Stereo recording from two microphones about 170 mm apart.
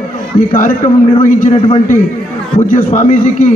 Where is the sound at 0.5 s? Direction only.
55° left (ahead or behind).